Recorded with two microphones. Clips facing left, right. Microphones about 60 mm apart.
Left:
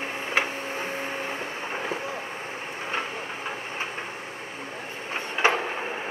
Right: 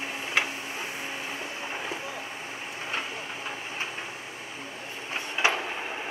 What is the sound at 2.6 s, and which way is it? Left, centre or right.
Vehicle, left.